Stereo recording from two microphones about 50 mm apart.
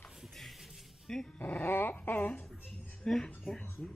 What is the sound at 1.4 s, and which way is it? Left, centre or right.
Dog, left.